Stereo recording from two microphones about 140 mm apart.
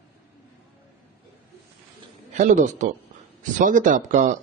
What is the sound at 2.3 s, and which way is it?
Speech, 65° right (ahead or behind).